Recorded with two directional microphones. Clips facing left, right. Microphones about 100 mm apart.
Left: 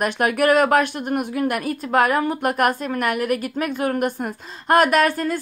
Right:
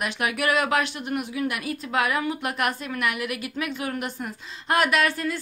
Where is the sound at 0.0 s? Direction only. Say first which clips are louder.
Left 7 dB; 45° left (ahead or behind).